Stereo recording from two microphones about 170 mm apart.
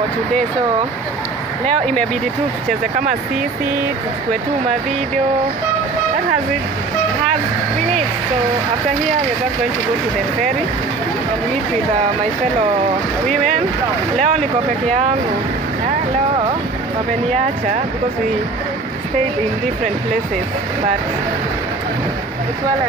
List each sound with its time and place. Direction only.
14.1 s speech: 45° right (ahead or behind)